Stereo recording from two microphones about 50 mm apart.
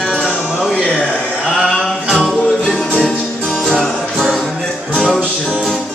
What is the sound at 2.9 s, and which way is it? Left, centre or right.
Music, left.